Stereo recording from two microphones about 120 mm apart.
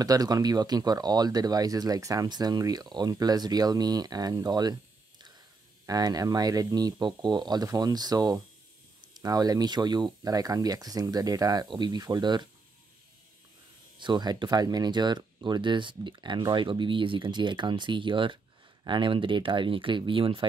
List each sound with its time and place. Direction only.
0.0 s speech: 30° right (ahead or behind)
5.9 s speech: 30° right (ahead or behind)
13.9 s speech: 40° right (ahead or behind)